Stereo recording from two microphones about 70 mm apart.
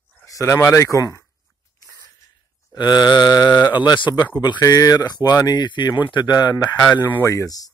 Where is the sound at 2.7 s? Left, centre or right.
Left.